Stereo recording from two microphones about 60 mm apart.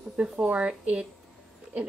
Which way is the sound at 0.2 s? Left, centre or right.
Right.